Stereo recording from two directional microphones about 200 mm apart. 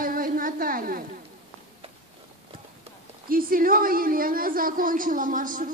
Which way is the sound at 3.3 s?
45° right (ahead or behind).